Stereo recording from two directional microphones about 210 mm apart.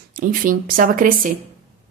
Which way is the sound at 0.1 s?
40° right (ahead or behind).